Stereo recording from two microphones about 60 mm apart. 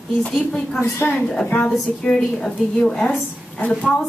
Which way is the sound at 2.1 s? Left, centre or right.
Centre.